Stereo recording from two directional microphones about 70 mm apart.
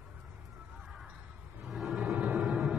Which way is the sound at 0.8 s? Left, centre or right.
Centre.